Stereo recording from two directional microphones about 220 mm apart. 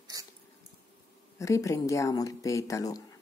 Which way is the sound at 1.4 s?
15° left (ahead or behind).